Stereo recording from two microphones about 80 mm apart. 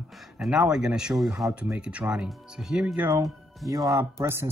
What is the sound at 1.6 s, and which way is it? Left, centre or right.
Speech, centre.